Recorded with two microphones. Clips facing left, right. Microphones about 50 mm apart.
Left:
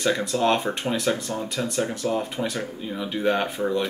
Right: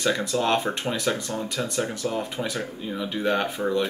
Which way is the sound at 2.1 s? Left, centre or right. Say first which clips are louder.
Left 2 dB; centre.